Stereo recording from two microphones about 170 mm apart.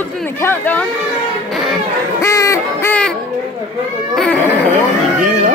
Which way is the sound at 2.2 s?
15° left (ahead or behind).